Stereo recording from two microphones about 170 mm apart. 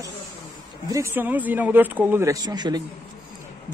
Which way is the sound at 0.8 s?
15° right (ahead or behind).